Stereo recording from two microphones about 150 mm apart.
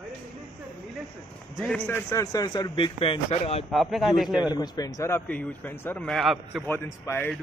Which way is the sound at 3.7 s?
Centre (ahead or behind).